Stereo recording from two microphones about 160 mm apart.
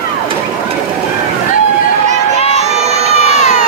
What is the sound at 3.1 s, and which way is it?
Crowd, 45° left (ahead or behind).